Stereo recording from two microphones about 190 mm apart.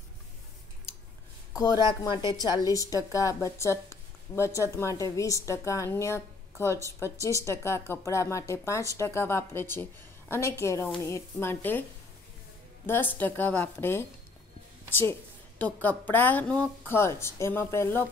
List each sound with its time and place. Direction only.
1.5 s a woman's voice: 20° left (ahead or behind)
12.8 s a woman's voice: 10° left (ahead or behind)